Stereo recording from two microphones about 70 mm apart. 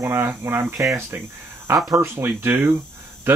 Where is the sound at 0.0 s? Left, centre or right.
Right.